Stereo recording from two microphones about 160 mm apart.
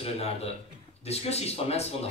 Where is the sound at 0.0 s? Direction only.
40° left (ahead or behind).